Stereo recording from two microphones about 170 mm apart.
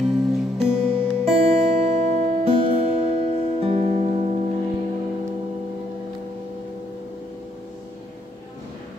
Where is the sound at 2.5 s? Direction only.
35° right (ahead or behind).